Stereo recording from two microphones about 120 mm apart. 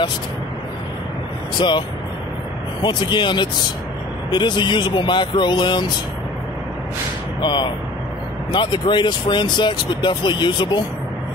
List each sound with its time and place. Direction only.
1.6 s speech: 40° left (ahead or behind)
7.4 s speech: 40° left (ahead or behind)